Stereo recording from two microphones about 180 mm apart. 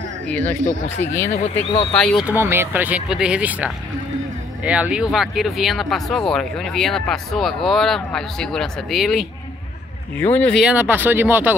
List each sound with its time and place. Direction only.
0.3 s speech: 10° left (ahead or behind)
1.3 s speech: 35° left (ahead or behind)
2.2 s speech: 10° right (ahead or behind)
10.1 s speech: 10° left (ahead or behind)
10.6 s speech: 10° right (ahead or behind)